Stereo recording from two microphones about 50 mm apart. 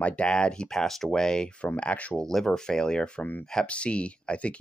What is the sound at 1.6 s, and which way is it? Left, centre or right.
Speech, left.